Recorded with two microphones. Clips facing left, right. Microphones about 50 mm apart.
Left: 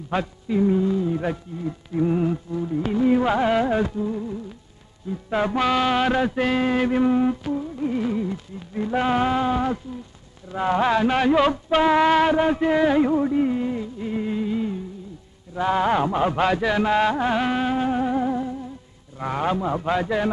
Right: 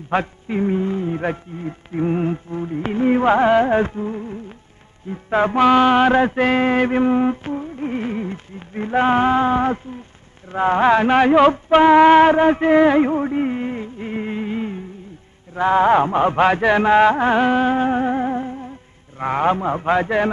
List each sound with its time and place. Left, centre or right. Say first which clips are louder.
0.1 s music: right 3 dB; right